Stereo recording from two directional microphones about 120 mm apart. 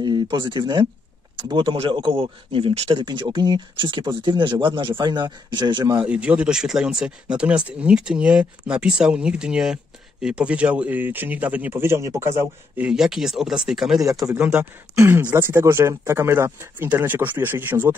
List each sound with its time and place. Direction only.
0.0 s speech: 35° right (ahead or behind)
6.0 s speech: 10° right (ahead or behind)
12.7 s speech: 5° right (ahead or behind)